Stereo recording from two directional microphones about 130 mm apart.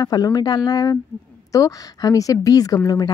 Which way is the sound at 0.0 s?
30° left (ahead or behind).